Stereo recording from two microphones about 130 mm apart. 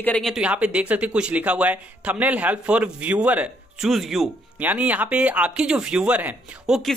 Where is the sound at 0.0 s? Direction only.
10° left (ahead or behind).